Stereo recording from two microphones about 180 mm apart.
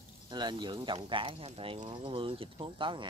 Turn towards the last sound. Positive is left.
turn(degrees=-25)  # may be behind; listen again after turning